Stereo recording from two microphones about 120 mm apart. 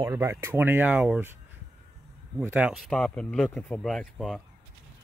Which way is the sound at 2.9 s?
5° left (ahead or behind).